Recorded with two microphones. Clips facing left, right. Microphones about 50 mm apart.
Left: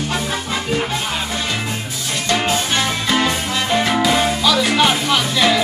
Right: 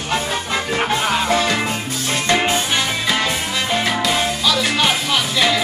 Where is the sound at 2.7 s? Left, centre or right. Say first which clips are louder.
Left 1 dB; centre.